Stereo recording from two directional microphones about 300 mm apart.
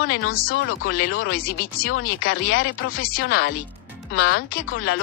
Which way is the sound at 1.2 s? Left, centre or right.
Left.